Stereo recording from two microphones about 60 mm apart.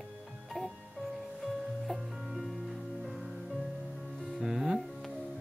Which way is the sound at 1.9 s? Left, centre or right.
Centre.